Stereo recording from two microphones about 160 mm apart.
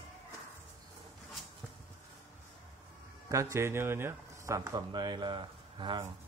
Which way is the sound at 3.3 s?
20° right (ahead or behind).